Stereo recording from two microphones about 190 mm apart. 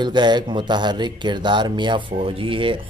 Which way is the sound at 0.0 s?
25° right (ahead or behind).